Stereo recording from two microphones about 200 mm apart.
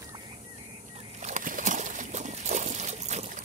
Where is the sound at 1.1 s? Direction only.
35° right (ahead or behind).